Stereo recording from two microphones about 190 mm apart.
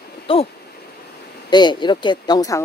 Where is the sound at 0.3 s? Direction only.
30° left (ahead or behind).